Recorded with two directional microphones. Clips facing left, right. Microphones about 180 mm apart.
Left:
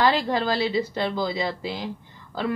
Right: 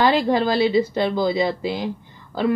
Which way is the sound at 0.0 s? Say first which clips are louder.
Right 4 dB; 20° right (ahead or behind).